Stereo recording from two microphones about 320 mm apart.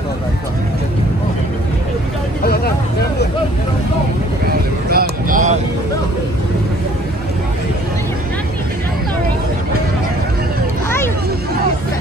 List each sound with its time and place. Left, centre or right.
2.4 s vehicle: left
4.8 s vehicle: right